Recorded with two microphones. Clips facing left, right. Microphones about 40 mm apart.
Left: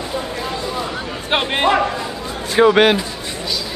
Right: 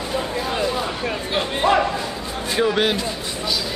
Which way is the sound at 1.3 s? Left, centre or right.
Left.